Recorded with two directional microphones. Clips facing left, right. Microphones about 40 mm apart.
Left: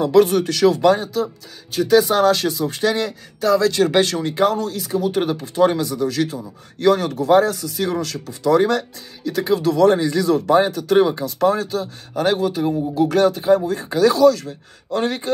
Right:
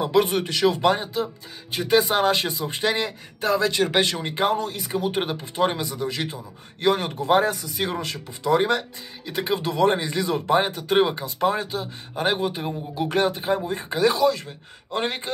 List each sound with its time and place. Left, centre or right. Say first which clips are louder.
0.0 s speech: left 6 dB; right